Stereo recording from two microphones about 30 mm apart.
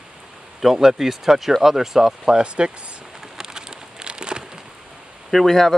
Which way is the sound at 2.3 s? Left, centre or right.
Right.